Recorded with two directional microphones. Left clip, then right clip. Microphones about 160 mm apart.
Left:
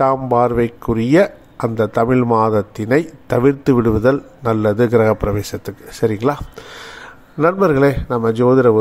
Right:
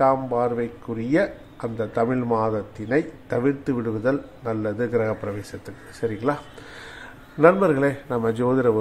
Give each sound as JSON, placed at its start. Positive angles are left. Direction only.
{"t": 0.0, "sound": "a man's voice", "side_deg": 50}